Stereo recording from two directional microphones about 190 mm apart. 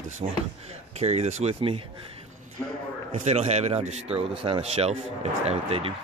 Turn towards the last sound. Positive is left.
turn(degrees=-30)  # may be behind; listen again after turning